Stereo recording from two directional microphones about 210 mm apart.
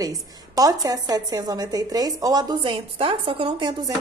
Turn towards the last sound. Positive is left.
turn(degrees=-20)  # may be behind; listen again after turning